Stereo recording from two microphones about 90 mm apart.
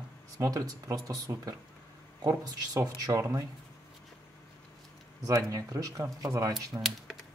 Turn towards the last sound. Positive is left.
turn(degrees=-35)  # may be behind; listen again after turning